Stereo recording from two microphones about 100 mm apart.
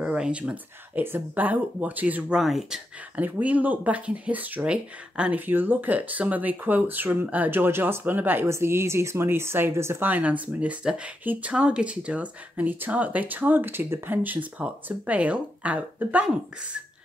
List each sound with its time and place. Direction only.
0.0 s speech: 10° right (ahead or behind)
3.2 s speech: 15° right (ahead or behind)